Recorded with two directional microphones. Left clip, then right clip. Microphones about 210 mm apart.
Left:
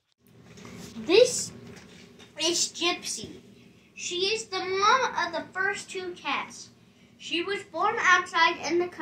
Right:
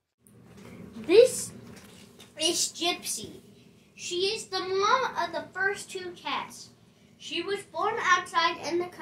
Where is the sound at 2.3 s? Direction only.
50° left (ahead or behind).